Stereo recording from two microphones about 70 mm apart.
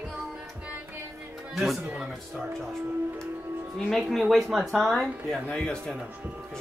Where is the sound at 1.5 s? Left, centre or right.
Centre.